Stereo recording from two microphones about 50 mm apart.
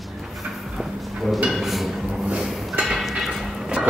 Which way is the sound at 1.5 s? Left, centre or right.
Centre.